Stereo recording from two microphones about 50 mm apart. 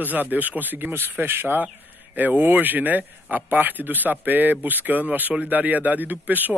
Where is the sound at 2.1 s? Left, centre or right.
Right.